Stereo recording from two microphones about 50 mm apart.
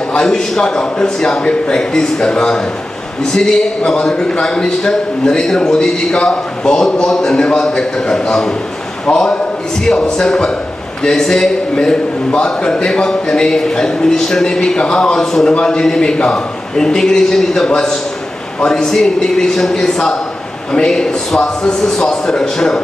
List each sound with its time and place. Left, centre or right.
0.1 s a man's voice: centre